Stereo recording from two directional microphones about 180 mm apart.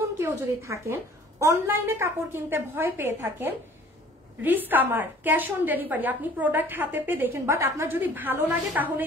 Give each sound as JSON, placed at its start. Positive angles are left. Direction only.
{"t": 0.2, "sound": "a woman's voice", "side_deg": -15}